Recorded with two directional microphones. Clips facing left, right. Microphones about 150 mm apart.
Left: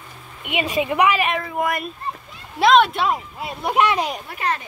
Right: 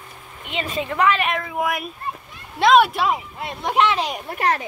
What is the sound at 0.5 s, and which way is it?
Speech, 15° left (ahead or behind).